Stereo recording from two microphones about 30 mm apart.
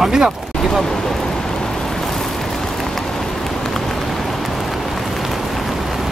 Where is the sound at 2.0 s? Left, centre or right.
Centre.